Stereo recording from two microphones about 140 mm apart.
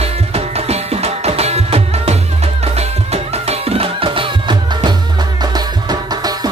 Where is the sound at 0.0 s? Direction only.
45° right (ahead or behind).